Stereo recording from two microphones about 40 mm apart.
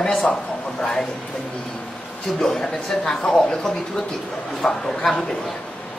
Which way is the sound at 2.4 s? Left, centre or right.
Centre.